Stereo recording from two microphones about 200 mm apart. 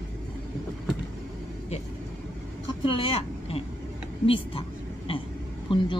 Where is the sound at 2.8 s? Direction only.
25° left (ahead or behind).